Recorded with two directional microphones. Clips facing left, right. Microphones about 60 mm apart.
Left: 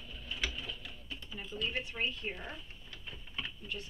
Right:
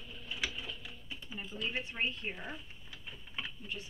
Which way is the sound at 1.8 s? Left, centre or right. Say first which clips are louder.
Even; right.